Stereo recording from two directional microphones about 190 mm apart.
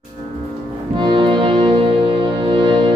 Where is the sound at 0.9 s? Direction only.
25° right (ahead or behind).